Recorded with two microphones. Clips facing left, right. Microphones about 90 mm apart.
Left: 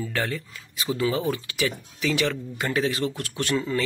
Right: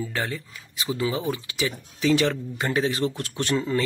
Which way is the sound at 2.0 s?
35° right (ahead or behind).